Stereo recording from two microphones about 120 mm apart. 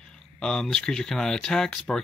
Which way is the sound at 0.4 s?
5° left (ahead or behind).